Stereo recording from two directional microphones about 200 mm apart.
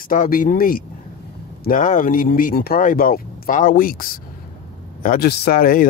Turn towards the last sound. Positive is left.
turn(degrees=45)  # may be behind; listen again after turning